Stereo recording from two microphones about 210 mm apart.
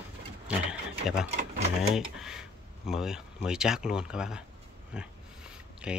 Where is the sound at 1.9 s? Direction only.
Centre (ahead or behind).